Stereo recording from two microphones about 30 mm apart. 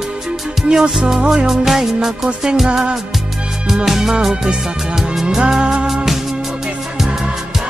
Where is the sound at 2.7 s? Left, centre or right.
Right.